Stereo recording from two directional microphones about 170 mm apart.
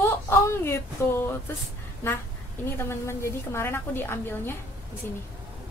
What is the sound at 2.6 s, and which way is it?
A woman's voice, 15° left (ahead or behind).